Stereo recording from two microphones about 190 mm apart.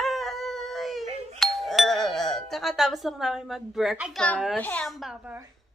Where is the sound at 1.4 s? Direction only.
Centre (ahead or behind).